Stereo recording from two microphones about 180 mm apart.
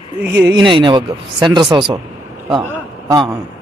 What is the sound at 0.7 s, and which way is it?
Speech, 25° right (ahead or behind).